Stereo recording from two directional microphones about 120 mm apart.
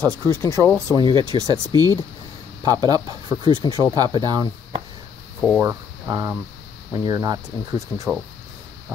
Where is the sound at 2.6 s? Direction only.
35° right (ahead or behind).